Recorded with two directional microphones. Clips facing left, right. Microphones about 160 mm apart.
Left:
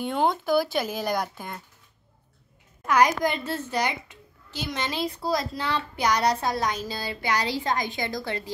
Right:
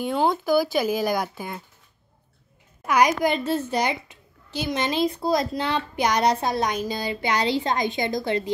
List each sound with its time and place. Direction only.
0.0 s speech: 5° right (ahead or behind)
2.9 s a child's voice: 15° right (ahead or behind)